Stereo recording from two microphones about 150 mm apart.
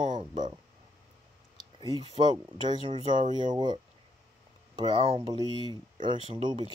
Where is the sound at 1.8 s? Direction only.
30° right (ahead or behind).